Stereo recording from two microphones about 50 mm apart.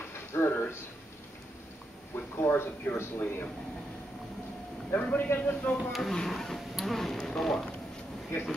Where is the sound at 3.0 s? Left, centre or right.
Left.